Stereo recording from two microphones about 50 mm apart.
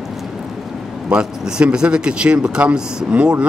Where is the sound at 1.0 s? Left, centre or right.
Centre.